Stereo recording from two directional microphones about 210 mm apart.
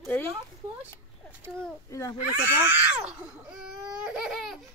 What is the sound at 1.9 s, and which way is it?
Speech, 15° left (ahead or behind).